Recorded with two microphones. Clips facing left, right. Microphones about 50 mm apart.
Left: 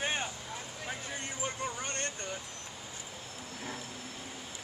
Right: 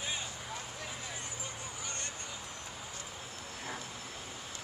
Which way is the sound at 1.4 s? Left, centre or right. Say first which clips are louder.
Left 7 dB; left.